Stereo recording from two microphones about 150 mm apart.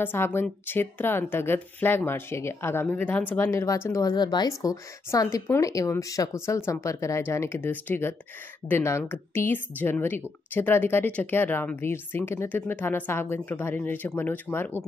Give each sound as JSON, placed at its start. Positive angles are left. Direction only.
{"t": 0.0, "sound": "a woman's voice", "side_deg": 15}